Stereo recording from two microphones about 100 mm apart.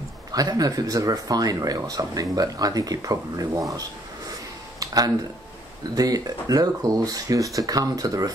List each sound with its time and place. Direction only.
0.3 s speech: 40° right (ahead or behind)
4.7 s a sound: 40° right (ahead or behind)
5.9 s speech: 40° right (ahead or behind)